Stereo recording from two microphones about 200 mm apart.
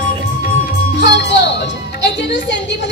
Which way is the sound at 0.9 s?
60° left (ahead or behind).